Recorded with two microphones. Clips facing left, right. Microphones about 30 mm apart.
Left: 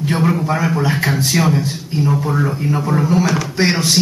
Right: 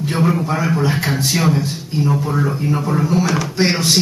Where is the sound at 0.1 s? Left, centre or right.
Centre.